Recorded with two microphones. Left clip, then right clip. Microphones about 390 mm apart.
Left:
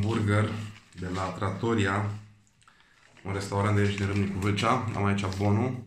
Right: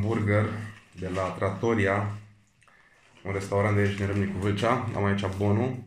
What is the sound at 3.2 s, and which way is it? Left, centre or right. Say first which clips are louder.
Speech: right 3 dB; centre.